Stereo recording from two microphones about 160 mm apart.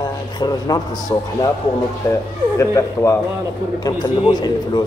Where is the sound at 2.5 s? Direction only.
20° left (ahead or behind).